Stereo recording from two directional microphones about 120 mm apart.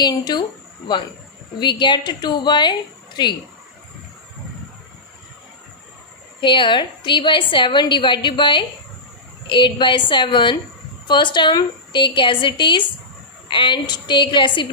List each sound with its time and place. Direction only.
0.0 s a woman's voice: 35° left (ahead or behind)
6.4 s a woman's voice: 45° left (ahead or behind)